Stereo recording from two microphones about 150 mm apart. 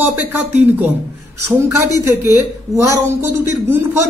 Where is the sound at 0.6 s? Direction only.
10° right (ahead or behind).